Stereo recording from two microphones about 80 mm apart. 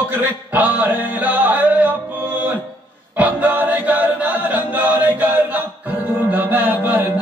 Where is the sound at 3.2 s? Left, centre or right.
Right.